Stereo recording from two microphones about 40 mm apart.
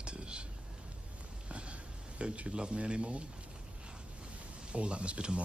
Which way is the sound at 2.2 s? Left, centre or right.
Right.